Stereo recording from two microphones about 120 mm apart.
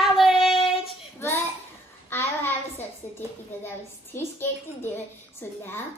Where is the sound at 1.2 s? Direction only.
20° left (ahead or behind).